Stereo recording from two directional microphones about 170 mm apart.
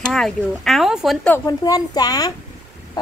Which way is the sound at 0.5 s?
Centre (ahead or behind).